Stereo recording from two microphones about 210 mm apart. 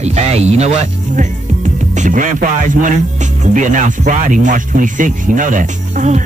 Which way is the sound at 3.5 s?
35° right (ahead or behind).